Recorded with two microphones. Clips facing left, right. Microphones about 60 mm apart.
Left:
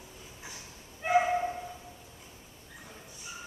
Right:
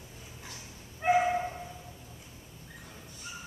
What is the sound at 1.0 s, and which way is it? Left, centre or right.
Dog, right.